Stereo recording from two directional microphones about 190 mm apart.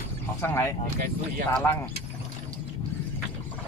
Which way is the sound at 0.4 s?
15° left (ahead or behind).